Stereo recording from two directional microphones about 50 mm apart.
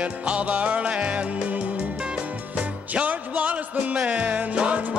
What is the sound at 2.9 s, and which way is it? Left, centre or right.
Music, right.